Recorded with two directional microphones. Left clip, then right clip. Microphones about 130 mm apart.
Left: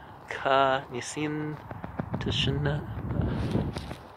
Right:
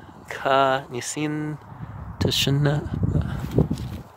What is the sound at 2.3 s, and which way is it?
Speech, 90° right.